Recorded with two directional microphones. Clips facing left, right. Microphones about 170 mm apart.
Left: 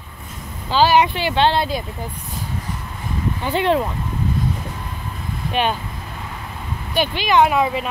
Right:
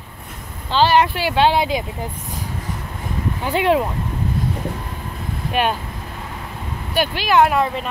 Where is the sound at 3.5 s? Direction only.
5° right (ahead or behind).